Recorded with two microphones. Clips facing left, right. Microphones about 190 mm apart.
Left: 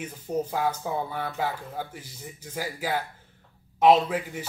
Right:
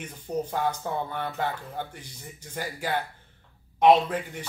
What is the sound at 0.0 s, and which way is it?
A man's voice, 5° left (ahead or behind).